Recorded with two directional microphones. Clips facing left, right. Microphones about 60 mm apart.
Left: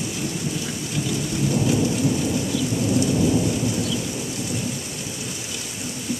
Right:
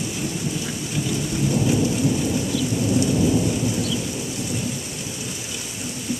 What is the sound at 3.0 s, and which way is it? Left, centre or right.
Thunder, centre.